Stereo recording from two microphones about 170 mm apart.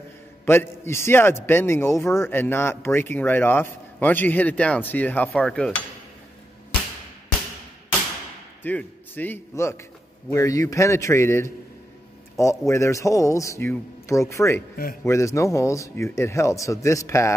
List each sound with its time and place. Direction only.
0.5 s speech: 15° left (ahead or behind)
8.6 s a man's voice: 10° left (ahead or behind)